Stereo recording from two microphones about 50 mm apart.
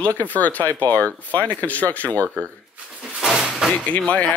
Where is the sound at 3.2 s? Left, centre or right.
Centre.